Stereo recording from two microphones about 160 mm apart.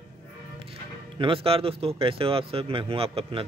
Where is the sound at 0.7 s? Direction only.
35° right (ahead or behind).